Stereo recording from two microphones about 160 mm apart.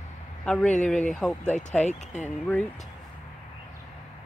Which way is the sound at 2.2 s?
10° left (ahead or behind).